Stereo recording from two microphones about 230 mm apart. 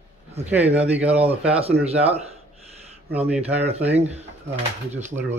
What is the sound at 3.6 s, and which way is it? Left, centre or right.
Speech, right.